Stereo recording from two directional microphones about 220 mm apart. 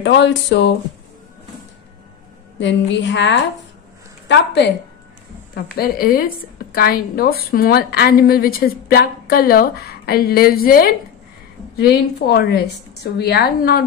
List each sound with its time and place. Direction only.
0.0 s speech: 55° left (ahead or behind)
2.6 s a woman's voice: 55° left (ahead or behind)